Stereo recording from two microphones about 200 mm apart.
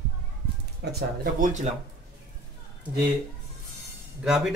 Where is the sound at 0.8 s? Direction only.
50° right (ahead or behind).